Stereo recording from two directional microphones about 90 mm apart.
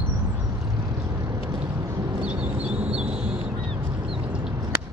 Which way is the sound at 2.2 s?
15° right (ahead or behind).